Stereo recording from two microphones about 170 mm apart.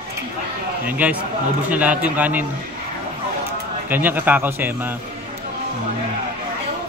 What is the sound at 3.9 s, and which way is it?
Speech, 10° right (ahead or behind).